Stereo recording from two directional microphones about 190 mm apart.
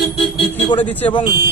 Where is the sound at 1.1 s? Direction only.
25° left (ahead or behind).